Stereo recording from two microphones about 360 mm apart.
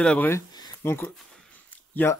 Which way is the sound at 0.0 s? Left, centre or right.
Centre.